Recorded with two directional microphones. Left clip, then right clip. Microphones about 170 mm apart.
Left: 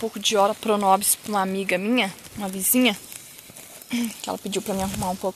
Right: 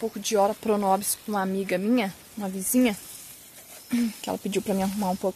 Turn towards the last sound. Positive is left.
turn(degrees=-5)  # may be behind; listen again after turning